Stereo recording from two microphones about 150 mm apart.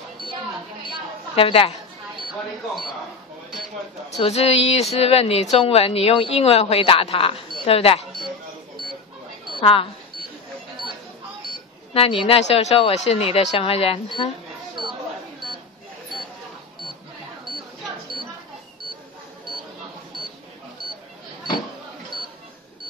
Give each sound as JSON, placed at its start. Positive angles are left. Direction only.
{"t": 1.3, "sound": "speech", "side_deg": 40}
{"t": 4.2, "sound": "speech", "side_deg": 45}
{"t": 9.6, "sound": "speech", "side_deg": 35}
{"t": 11.9, "sound": "speech", "side_deg": 40}